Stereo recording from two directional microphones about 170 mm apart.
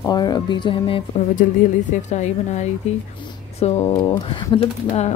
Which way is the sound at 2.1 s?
45° left (ahead or behind).